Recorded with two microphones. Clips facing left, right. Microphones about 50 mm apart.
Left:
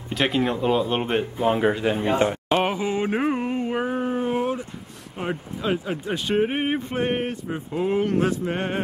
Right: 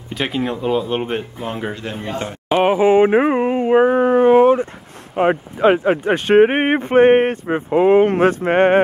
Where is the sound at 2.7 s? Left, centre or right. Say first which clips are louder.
Right 12 dB; right.